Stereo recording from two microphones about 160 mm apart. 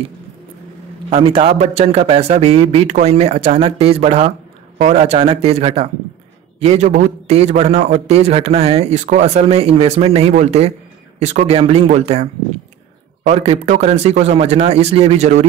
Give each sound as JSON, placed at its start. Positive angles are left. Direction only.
{"t": 1.1, "sound": "a man's voice", "side_deg": -35}